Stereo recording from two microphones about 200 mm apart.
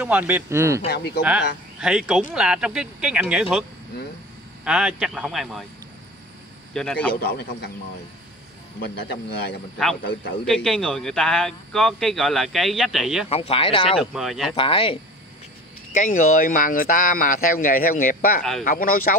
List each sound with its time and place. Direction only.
0.0 s speech: 10° right (ahead or behind)
0.8 s speech: 55° left (ahead or behind)
1.8 s speech: 5° right (ahead or behind)
4.6 s speech: 5° right (ahead or behind)
6.7 s a man's voice: 5° left (ahead or behind)
8.8 s speech: 60° left (ahead or behind)
10.4 s speech: centre (ahead or behind)
13.3 s speech: 30° left (ahead or behind)
14.1 s speech: centre (ahead or behind)
14.5 s speech: 25° left (ahead or behind)
15.9 s speech: 40° left (ahead or behind)